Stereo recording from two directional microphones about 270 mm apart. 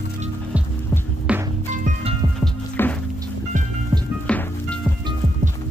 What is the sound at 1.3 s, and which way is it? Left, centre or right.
Music, centre.